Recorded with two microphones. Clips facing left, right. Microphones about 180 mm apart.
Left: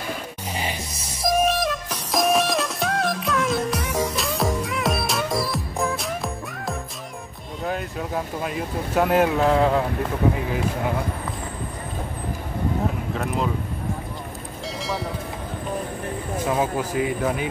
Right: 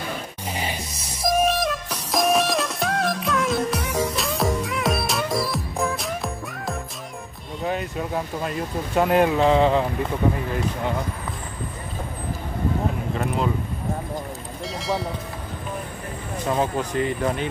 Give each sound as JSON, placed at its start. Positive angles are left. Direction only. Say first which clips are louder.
{"t": 1.2, "sound": "music", "louder": "even", "side_deg": 0}
{"t": 7.6, "sound": "speech", "louder": "right 1 dB", "side_deg": 0}
{"t": 13.1, "sound": "speech", "louder": "right 1 dB", "side_deg": 0}
{"t": 14.7, "sound": "vehicle", "louder": "right 2 dB", "side_deg": 0}
{"t": 16.4, "sound": "speech", "louder": "even", "side_deg": 5}